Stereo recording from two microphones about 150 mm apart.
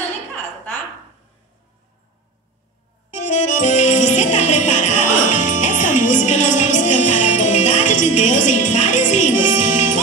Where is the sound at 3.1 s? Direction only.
55° left (ahead or behind).